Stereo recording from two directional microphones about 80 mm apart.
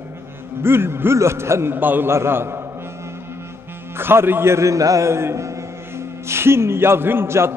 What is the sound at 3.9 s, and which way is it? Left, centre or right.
A man's voice, right.